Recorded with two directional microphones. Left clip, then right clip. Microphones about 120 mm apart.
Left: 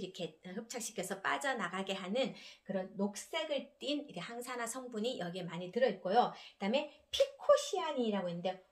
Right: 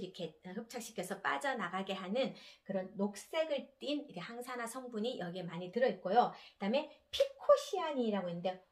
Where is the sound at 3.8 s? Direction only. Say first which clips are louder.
Left 1 dB; 30° left (ahead or behind).